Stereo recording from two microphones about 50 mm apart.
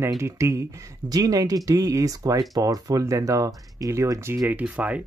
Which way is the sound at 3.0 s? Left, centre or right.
Right.